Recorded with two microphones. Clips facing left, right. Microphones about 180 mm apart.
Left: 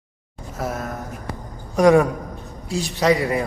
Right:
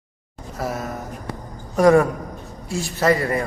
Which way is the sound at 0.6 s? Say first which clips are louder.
Even; centre (ahead or behind).